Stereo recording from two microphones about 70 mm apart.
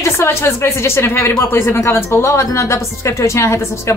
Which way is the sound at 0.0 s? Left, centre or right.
Left.